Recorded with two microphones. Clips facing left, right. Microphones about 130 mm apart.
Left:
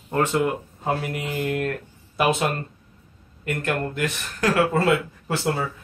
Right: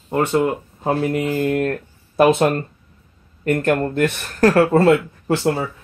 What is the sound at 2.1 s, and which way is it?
Speech, 45° right (ahead or behind).